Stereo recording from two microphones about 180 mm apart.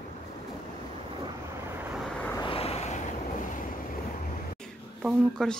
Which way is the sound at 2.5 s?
35° left (ahead or behind).